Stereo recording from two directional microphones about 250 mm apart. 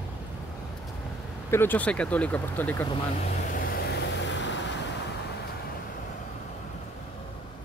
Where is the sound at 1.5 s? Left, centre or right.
Centre.